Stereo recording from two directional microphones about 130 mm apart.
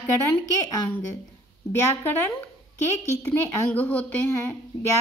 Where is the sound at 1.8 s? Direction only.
20° left (ahead or behind).